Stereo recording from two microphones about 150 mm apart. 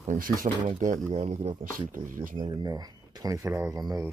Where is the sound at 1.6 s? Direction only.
65° right (ahead or behind).